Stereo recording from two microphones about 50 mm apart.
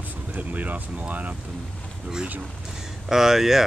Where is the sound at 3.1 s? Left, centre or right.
Centre.